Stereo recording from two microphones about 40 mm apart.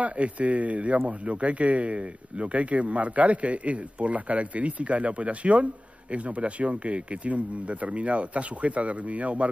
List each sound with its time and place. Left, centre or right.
0.0 s a man's voice: right